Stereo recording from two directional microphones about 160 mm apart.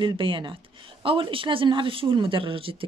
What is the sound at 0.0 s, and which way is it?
Speech, 30° right (ahead or behind).